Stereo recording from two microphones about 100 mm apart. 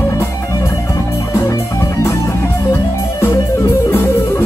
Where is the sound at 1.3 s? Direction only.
25° left (ahead or behind).